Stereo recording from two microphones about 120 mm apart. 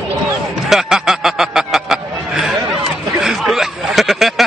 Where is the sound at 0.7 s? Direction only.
5° right (ahead or behind).